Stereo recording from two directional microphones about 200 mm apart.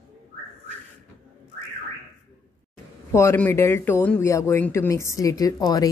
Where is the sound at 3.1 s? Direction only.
15° left (ahead or behind).